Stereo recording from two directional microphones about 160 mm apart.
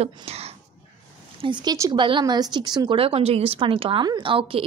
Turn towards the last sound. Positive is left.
turn(degrees=-35)  # may be behind; listen again after turning